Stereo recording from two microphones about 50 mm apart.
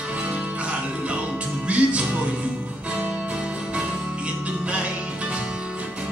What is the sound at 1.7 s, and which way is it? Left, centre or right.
Music, right.